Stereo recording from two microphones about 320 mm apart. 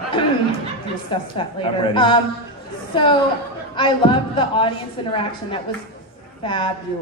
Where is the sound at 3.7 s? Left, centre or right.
Centre.